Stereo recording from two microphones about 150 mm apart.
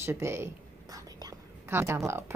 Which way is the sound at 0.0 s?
15° right (ahead or behind).